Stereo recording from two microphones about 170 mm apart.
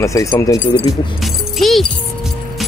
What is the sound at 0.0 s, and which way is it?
Speech, 15° left (ahead or behind).